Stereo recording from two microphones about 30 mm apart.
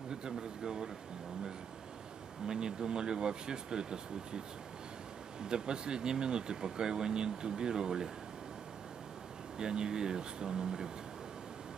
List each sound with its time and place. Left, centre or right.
0.1 s speech: right
2.4 s speech: right
5.4 s speech: right
9.6 s speech: right